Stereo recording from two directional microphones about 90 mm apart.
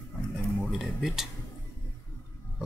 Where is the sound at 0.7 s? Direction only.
5° right (ahead or behind).